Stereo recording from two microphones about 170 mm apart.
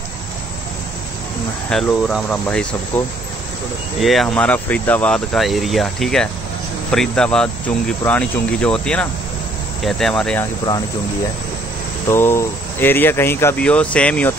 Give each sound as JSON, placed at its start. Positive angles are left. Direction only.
{"t": 1.7, "sound": "speech", "side_deg": 0}
{"t": 4.0, "sound": "speech", "side_deg": 0}
{"t": 12.1, "sound": "speech", "side_deg": 15}